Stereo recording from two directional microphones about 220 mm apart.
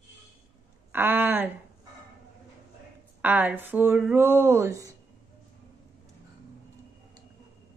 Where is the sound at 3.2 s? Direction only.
10° right (ahead or behind).